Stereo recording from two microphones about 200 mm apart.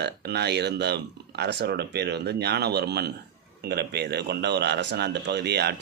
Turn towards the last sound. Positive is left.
turn(degrees=-55)  # may be behind; listen again after turning